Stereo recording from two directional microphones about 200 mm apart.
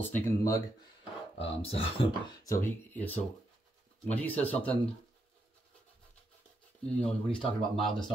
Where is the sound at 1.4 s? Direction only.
30° left (ahead or behind).